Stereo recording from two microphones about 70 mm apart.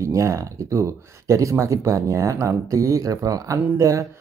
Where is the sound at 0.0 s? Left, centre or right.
Right.